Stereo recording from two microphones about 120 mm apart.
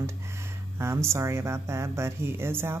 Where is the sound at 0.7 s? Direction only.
20° right (ahead or behind).